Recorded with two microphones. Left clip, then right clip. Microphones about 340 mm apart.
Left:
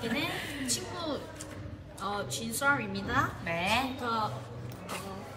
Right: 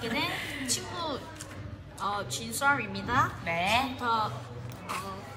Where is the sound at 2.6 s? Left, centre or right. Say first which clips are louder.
Right 2 dB; centre.